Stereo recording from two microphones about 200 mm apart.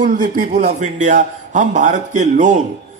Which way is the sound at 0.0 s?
40° right (ahead or behind).